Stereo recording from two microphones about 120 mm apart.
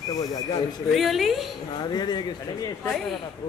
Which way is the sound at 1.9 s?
35° left (ahead or behind).